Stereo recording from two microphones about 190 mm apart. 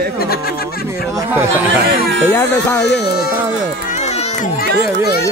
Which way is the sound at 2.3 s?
10° left (ahead or behind).